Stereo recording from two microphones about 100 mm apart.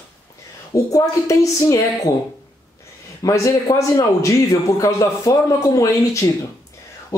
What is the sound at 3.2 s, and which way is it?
A man's voice, 35° left (ahead or behind).